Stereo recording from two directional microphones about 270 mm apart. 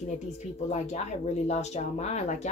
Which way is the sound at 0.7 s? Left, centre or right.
Left.